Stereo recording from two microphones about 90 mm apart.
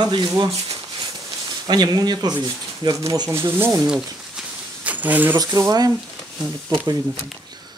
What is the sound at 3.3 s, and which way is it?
Speech, 25° right (ahead or behind).